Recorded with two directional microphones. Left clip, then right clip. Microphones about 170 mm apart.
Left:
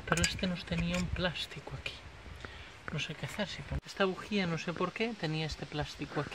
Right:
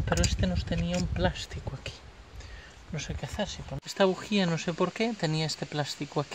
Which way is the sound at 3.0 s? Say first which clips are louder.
Right 3 dB; 30° right (ahead or behind).